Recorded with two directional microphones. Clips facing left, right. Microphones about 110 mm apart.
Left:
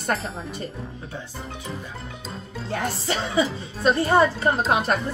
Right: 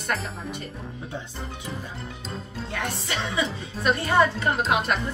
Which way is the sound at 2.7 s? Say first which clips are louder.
Left 5 dB; 35° left (ahead or behind).